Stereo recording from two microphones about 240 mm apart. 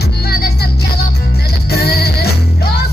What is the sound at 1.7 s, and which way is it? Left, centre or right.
Music, left.